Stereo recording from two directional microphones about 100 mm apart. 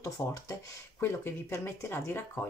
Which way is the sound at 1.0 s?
25° left (ahead or behind).